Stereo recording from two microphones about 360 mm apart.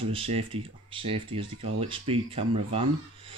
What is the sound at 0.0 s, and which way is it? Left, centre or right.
Speech, centre.